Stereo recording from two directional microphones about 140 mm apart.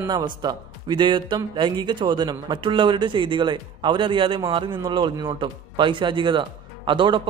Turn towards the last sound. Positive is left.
turn(degrees=-35)  # may be behind; listen again after turning